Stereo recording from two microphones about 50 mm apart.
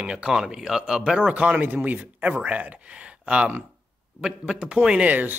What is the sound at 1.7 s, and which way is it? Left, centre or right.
A man's voice, right.